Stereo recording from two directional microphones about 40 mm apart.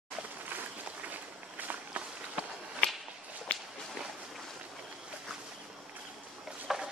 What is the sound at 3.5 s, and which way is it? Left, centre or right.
Walk, left.